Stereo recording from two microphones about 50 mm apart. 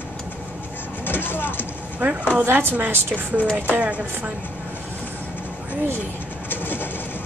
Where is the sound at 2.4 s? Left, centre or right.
Right.